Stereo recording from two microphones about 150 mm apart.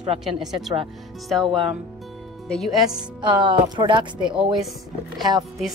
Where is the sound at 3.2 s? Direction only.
30° right (ahead or behind).